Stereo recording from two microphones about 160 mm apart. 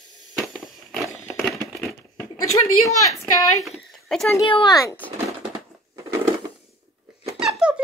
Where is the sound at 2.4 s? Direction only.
20° left (ahead or behind).